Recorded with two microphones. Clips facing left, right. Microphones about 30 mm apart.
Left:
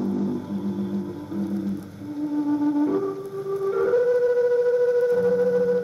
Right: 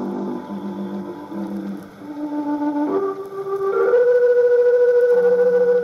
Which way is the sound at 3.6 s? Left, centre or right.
Centre.